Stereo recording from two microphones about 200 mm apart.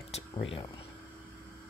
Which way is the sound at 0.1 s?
30° left (ahead or behind).